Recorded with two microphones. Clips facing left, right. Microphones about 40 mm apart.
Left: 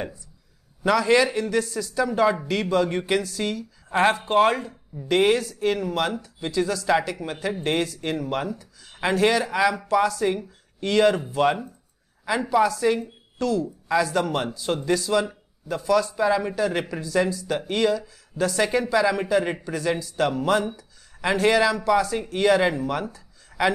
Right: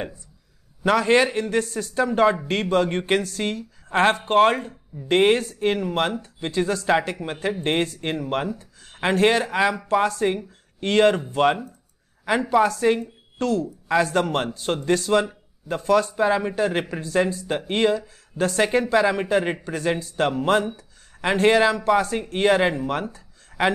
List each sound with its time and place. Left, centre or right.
0.8 s a man's voice: right